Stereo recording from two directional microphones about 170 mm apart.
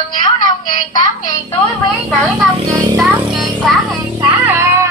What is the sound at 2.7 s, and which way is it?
Music, 20° right (ahead or behind).